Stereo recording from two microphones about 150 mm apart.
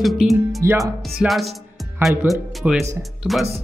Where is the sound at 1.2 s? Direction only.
Centre (ahead or behind).